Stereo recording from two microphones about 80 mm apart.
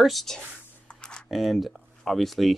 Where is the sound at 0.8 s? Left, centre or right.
Centre.